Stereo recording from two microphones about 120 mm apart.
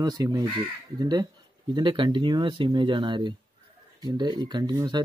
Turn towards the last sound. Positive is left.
turn(degrees=-30)  # may be behind; listen again after turning